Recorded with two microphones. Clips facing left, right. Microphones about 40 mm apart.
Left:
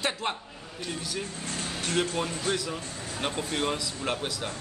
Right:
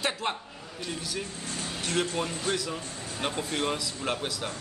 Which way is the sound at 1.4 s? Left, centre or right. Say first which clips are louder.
Left 1 dB; left.